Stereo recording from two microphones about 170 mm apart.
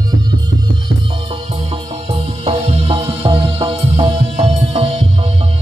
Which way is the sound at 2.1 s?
35° right (ahead or behind).